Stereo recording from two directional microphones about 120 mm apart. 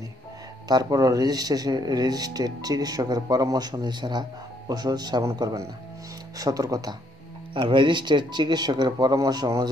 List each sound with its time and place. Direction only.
0.7 s speech: 30° right (ahead or behind)
7.5 s speech: 45° right (ahead or behind)